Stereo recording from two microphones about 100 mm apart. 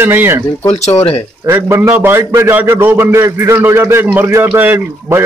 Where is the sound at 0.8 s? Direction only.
90° left.